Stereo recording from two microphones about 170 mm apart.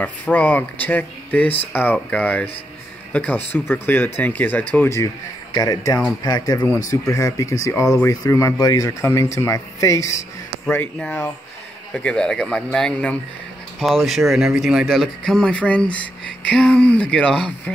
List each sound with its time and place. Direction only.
0.0 s speech: 10° left (ahead or behind)